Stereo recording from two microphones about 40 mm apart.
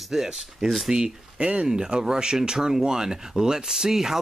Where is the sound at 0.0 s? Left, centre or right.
Centre.